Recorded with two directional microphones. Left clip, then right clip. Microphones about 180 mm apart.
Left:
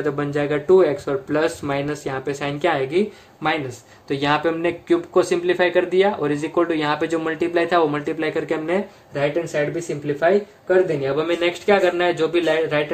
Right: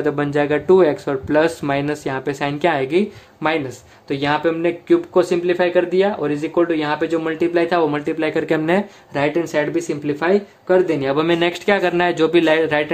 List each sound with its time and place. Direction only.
0.0 s speech: 35° right (ahead or behind)
4.1 s speech: 15° right (ahead or behind); by 8.8 s 35° right (ahead or behind)
9.1 s speech: 55° right (ahead or behind)
10.9 s speech: 45° right (ahead or behind)